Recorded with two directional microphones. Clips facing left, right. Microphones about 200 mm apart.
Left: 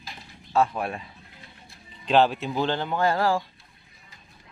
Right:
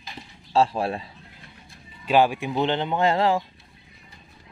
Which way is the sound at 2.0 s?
10° right (ahead or behind).